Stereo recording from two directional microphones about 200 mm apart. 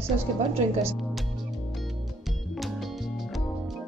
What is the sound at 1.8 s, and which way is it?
Music, centre (ahead or behind).